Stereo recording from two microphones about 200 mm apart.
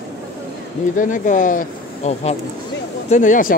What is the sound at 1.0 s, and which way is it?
Speech, 40° left (ahead or behind).